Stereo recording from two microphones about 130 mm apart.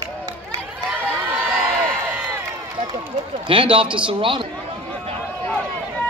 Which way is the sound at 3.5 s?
40° right (ahead or behind).